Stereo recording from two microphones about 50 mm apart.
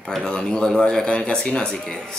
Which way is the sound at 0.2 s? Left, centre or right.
Centre.